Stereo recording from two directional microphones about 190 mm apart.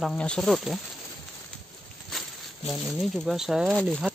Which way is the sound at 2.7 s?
Centre (ahead or behind).